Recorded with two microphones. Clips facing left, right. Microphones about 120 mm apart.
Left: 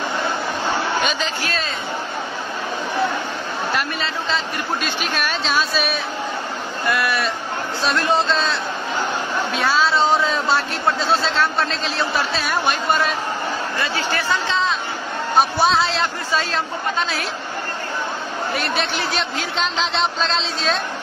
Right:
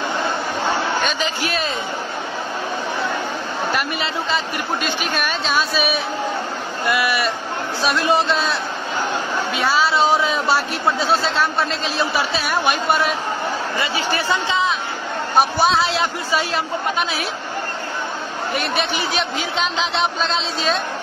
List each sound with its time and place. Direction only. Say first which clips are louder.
4.8 s speech: right 1 dB; centre (ahead or behind)
13.7 s speech: right 1 dB; 20° right (ahead or behind)
15.3 s speech: even; centre (ahead or behind)
18.5 s speech: right 2 dB; centre (ahead or behind)